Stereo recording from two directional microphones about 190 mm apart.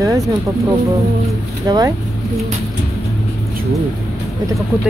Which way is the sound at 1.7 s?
20° right (ahead or behind).